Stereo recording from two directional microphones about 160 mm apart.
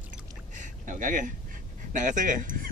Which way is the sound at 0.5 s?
55° right (ahead or behind).